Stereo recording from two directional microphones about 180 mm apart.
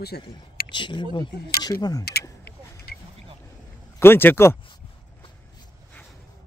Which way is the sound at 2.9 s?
60° left (ahead or behind).